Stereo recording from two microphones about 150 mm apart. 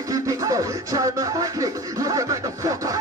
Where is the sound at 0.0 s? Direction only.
20° right (ahead or behind).